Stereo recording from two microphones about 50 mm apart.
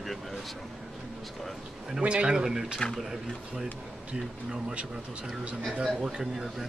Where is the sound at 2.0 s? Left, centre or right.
Right.